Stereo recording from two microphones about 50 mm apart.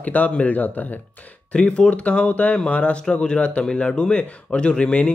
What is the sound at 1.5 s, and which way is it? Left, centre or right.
A man's voice, left.